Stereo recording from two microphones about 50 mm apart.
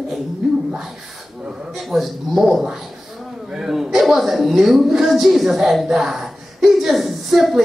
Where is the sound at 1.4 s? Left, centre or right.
Centre.